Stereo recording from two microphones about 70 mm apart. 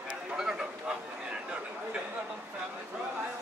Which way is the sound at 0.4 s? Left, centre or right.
Centre.